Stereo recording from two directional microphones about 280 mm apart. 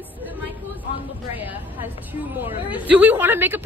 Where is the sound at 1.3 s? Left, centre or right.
Centre.